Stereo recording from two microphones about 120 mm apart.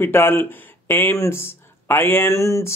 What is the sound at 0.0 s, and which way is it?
Speech, 15° left (ahead or behind).